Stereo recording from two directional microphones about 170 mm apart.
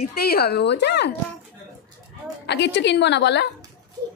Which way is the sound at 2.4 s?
85° left.